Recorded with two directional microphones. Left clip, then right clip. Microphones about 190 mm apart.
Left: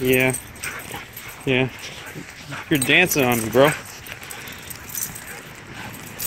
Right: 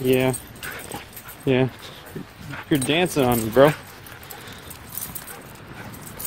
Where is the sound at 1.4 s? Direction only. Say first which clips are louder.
Even; 25° right (ahead or behind).